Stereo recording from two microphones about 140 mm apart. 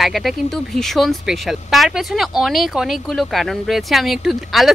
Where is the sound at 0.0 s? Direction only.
Centre (ahead or behind).